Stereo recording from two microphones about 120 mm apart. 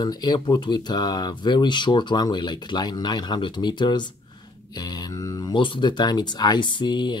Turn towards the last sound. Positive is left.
turn(degrees=40)  # may be behind; listen again after turning